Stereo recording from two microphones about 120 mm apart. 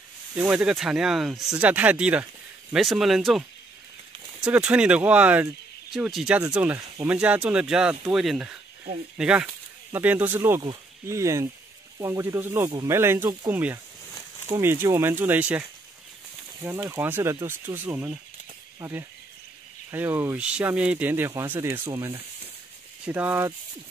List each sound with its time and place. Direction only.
0.3 s speech: 10° right (ahead or behind)
5.9 s speech: centre (ahead or behind)
6.5 s speech: 15° right (ahead or behind)
20.3 s speech: 10° right (ahead or behind)
21.9 s speech: 30° right (ahead or behind)
23.0 s speech: 15° right (ahead or behind)